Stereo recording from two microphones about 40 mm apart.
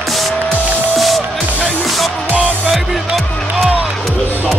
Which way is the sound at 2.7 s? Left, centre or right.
Centre.